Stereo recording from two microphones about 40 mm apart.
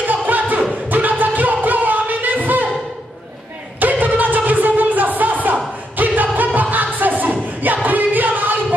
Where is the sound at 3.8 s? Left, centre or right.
Right.